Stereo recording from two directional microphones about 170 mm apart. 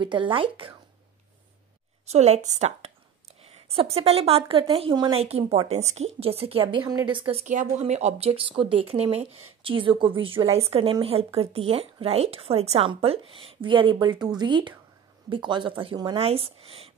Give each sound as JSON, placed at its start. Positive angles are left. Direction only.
{"t": 0.0, "sound": "a woman's voice", "side_deg": -30}
{"t": 2.0, "sound": "a woman's voice", "side_deg": -40}